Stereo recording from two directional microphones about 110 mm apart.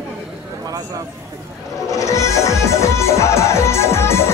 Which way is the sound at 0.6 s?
30° right (ahead or behind).